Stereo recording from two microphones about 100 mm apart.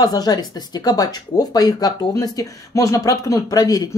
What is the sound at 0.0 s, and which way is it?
Speech, 40° left (ahead or behind).